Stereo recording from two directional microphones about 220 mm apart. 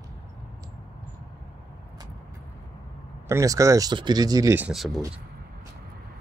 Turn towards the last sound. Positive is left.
turn(degrees=0)  # may be behind; listen again after turning